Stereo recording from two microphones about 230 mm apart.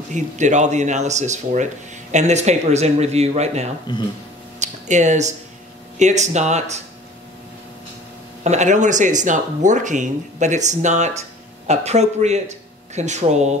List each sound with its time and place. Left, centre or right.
0.1 s speech: right
3.9 s speech: centre
4.6 s a sound: right
5.9 s speech: right
8.5 s speech: right